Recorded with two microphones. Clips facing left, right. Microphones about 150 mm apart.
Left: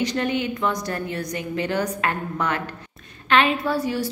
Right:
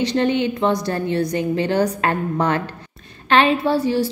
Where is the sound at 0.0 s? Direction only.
30° right (ahead or behind).